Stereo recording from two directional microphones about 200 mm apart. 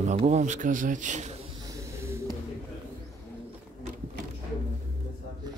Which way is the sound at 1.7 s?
15° right (ahead or behind).